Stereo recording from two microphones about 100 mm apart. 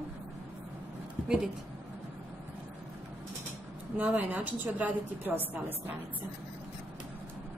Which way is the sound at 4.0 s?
15° right (ahead or behind).